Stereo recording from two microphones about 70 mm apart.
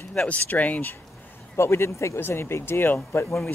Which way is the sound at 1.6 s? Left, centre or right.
Left.